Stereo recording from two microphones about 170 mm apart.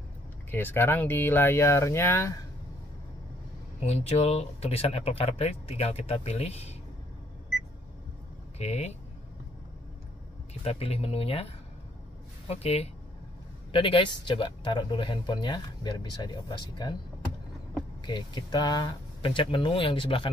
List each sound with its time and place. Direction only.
0.5 s speech: 10° left (ahead or behind)
3.8 s speech: 40° left (ahead or behind)
8.5 s speech: 40° left (ahead or behind)
10.6 s speech: 35° left (ahead or behind)
12.4 s speech: 35° left (ahead or behind)
18.0 s speech: 25° left (ahead or behind)